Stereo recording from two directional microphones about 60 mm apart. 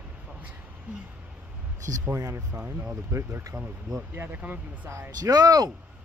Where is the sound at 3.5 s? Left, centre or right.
Centre.